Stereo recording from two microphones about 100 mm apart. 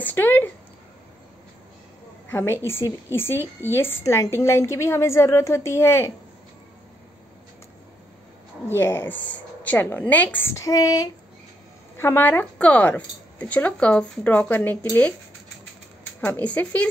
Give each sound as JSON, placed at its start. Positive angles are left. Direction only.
{"t": 0.0, "sound": "a sound", "side_deg": 20}
{"t": 2.3, "sound": "a woman's voice", "side_deg": 25}
{"t": 8.6, "sound": "a woman's voice", "side_deg": 25}
{"t": 10.5, "sound": "female singing", "side_deg": 35}
{"t": 12.0, "sound": "a woman's voice", "side_deg": 20}
{"t": 16.2, "sound": "a woman's voice", "side_deg": 15}